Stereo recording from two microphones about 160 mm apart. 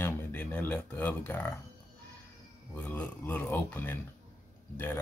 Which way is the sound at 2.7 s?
10° left (ahead or behind).